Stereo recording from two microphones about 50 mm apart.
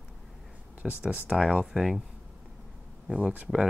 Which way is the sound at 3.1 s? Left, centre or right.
Right.